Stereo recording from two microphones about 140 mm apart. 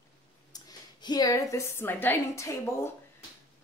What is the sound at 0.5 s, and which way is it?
A woman's voice, 30° left (ahead or behind).